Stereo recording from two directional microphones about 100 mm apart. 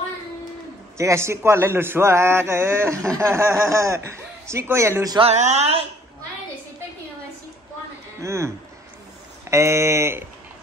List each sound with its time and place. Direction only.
0.9 s a man's voice: 30° right (ahead or behind)
5.2 s speech: 90° right
8.2 s a man's voice: 30° right (ahead or behind)
9.5 s a man's voice: 30° right (ahead or behind)